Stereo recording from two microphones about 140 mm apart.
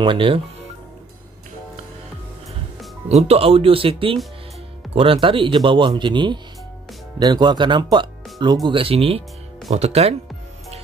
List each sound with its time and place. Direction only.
0.0 s speech: 35° right (ahead or behind)
3.1 s speech: 50° right (ahead or behind)